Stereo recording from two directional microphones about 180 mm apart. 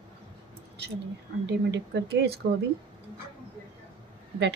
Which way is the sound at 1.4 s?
75° right (ahead or behind).